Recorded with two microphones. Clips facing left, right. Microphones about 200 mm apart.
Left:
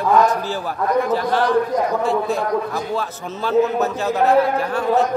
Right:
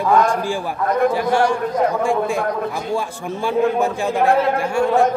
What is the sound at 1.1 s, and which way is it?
A man's voice, 15° right (ahead or behind).